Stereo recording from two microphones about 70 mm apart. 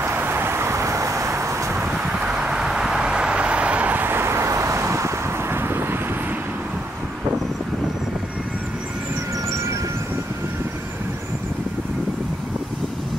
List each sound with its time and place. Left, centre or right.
0.0 s vehicle: right
1.8 s vehicle: centre; by 5.9 s right